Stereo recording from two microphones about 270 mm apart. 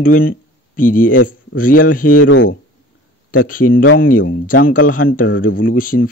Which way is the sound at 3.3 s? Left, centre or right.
Left.